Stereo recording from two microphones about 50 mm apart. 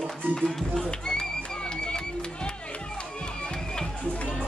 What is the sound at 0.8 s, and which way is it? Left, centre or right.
Crowd, centre.